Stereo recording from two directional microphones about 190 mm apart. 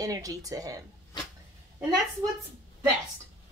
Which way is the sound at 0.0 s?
20° right (ahead or behind).